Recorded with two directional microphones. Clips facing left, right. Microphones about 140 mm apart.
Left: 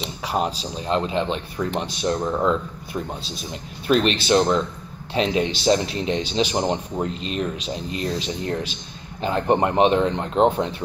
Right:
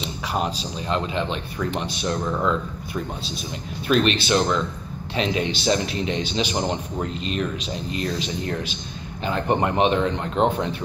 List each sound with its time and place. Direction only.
0.2 s speech: 35° left (ahead or behind)
2.1 s speech: 15° left (ahead or behind)
2.4 s speech: 35° left (ahead or behind)